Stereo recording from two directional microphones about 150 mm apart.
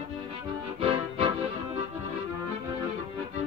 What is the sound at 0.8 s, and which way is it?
Music, 35° right (ahead or behind).